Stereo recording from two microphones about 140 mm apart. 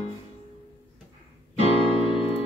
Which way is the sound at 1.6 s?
45° left (ahead or behind).